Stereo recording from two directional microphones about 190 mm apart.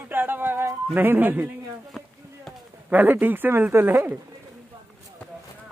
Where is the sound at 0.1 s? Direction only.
10° right (ahead or behind).